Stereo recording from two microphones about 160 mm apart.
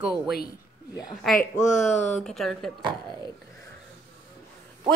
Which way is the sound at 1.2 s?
Centre (ahead or behind).